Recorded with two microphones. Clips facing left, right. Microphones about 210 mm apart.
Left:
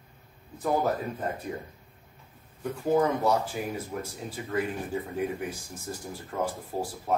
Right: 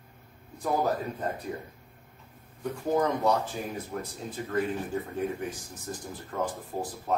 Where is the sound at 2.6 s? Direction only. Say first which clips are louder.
Left 2 dB; 5° left (ahead or behind).